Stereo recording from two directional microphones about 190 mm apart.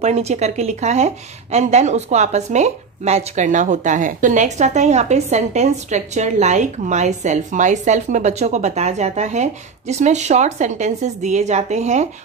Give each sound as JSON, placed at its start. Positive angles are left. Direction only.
{"t": 0.0, "sound": "speech", "side_deg": -35}